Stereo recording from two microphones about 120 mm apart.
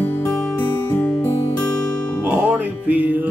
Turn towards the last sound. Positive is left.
turn(degrees=-15)  # may be behind; listen again after turning